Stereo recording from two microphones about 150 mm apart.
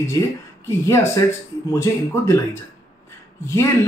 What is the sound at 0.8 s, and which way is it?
Speech, 20° left (ahead or behind).